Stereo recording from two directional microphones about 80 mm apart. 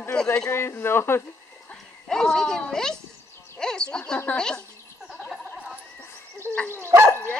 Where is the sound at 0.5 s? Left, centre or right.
Left.